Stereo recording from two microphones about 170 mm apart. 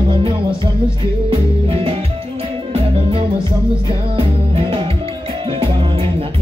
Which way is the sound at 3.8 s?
30° right (ahead or behind).